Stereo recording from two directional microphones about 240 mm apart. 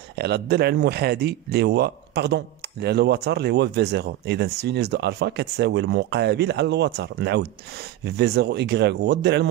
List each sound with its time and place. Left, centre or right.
0.1 s speech: right